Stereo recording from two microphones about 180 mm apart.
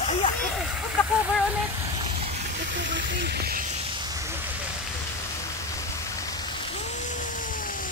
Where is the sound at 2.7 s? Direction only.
85° right; by 3.6 s 60° right (ahead or behind).